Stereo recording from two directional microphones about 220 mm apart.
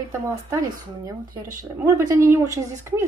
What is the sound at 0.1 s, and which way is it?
Speech, 15° right (ahead or behind).